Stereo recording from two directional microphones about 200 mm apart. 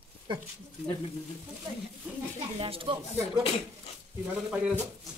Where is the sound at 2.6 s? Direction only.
25° right (ahead or behind).